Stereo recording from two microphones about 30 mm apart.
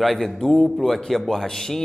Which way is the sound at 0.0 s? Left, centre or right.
Centre.